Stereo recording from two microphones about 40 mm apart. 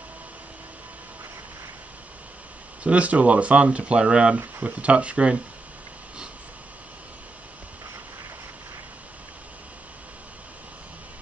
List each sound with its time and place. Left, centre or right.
2.8 s speech: right